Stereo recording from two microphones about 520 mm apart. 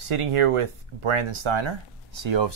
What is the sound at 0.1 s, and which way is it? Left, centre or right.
Speech, right.